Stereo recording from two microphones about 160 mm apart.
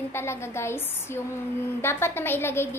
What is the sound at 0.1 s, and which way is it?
A woman's voice, 15° left (ahead or behind).